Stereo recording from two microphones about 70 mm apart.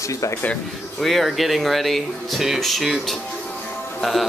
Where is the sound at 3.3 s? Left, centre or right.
Centre.